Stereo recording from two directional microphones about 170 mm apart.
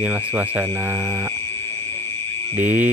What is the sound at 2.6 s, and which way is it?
Speech, 10° right (ahead or behind).